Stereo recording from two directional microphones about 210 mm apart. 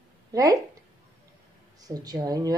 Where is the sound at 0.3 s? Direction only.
15° right (ahead or behind).